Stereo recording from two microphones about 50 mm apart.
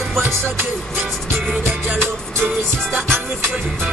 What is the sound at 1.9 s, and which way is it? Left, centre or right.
Music, right.